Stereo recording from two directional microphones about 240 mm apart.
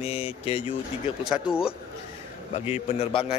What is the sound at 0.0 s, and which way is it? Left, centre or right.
Speech, left.